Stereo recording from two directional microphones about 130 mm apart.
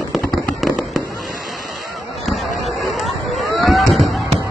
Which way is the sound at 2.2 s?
Centre (ahead or behind).